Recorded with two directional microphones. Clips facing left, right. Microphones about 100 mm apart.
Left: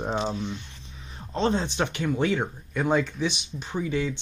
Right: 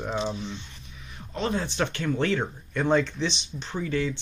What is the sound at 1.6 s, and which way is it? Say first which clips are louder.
Speech: left 1 dB; 20° left (ahead or behind).